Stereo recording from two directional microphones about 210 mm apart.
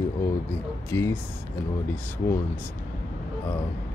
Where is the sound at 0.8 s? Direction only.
10° left (ahead or behind).